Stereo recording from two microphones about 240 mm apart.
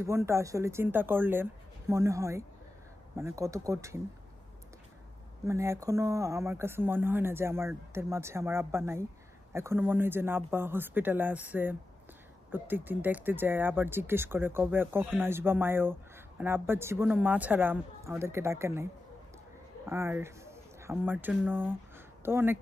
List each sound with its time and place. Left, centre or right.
0.0 s speech: centre
5.5 s speech: centre
19.9 s speech: centre